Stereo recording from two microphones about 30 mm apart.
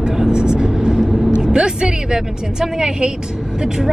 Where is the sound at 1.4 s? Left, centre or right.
Right.